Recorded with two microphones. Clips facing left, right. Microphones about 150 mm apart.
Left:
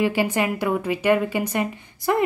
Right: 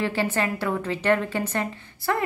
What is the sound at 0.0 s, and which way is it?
A woman's voice, 15° left (ahead or behind).